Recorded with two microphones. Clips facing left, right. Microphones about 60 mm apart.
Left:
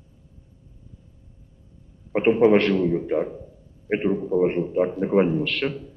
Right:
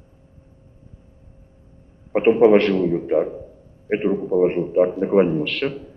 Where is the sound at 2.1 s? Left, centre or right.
Centre.